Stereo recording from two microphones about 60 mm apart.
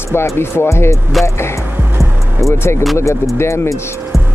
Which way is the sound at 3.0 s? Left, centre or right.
Left.